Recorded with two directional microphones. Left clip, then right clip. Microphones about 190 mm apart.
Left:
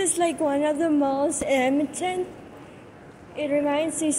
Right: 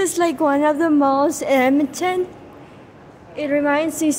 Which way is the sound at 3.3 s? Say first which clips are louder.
Right 5 dB; 25° right (ahead or behind).